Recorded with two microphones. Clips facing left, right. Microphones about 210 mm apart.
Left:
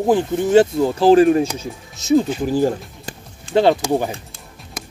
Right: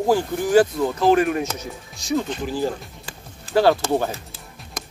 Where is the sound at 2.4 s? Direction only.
45° left (ahead or behind).